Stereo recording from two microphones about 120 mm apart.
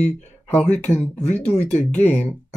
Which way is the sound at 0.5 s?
10° left (ahead or behind).